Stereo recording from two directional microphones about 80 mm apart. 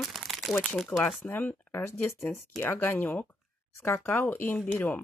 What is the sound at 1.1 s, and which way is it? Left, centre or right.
Speech, left.